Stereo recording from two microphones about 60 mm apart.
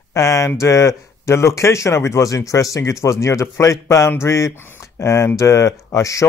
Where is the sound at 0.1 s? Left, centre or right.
Left.